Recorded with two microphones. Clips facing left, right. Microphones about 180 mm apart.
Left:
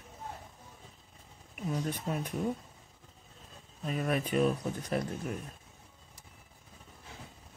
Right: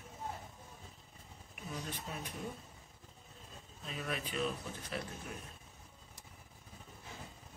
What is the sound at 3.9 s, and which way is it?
Speech, 50° left (ahead or behind).